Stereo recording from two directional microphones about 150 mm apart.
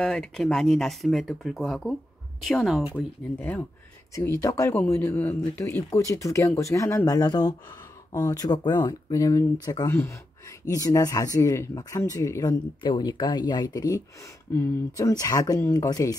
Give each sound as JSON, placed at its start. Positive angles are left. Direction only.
{"t": 0.0, "sound": "speech", "side_deg": 5}
{"t": 3.3, "sound": "a man's voice", "side_deg": 10}
{"t": 4.4, "sound": "a man's voice", "side_deg": 20}
{"t": 14.5, "sound": "a man's voice", "side_deg": 10}
{"t": 15.0, "sound": "speech", "side_deg": 25}